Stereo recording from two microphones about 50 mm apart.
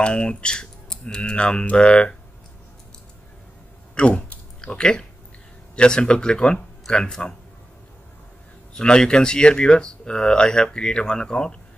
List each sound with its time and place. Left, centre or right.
0.0 s speech: left
3.9 s speech: centre
8.7 s speech: centre